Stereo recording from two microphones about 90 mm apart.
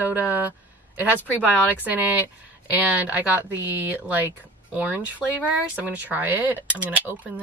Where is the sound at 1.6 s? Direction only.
20° right (ahead or behind).